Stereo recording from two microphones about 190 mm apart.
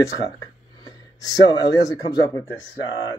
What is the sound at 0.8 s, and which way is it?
A man's voice, 20° left (ahead or behind).